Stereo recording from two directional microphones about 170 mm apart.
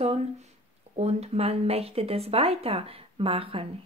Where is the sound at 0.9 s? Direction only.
40° right (ahead or behind).